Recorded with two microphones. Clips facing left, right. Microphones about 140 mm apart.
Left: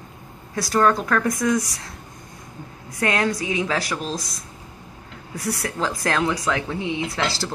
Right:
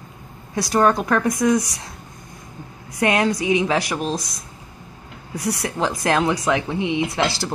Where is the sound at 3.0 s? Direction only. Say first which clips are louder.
Right 3 dB; 20° right (ahead or behind).